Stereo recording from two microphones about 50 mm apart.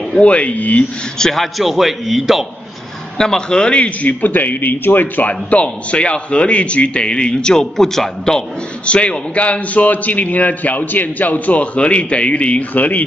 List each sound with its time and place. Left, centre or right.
0.2 s a man's voice: left
1.1 s a man's voice: centre
3.2 s a man's voice: centre; by 5.3 s left
5.3 s a man's voice: left; by 8.5 s centre
8.8 s a man's voice: left